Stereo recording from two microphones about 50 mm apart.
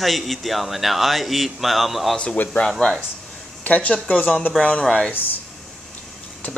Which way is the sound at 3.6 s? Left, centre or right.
Left.